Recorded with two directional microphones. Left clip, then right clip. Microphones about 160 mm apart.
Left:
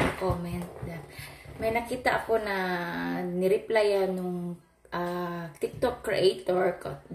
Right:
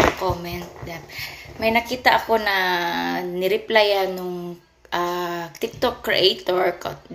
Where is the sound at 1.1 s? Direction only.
10° left (ahead or behind).